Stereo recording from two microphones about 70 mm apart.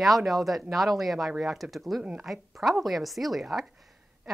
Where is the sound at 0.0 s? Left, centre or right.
Centre.